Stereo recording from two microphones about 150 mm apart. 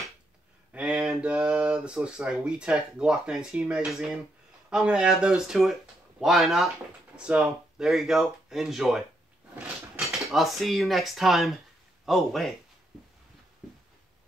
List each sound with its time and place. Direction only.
0.7 s speech: 5° right (ahead or behind)